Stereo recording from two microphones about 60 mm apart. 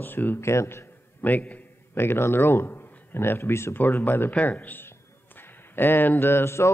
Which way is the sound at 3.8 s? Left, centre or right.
Left.